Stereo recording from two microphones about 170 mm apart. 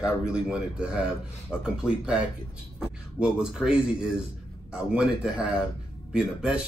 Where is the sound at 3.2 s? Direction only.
5° right (ahead or behind).